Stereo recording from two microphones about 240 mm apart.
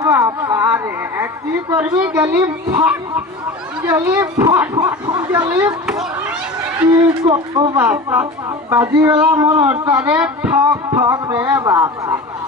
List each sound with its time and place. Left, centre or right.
0.1 s a woman's voice: centre
5.5 s speech: centre
6.8 s speech: centre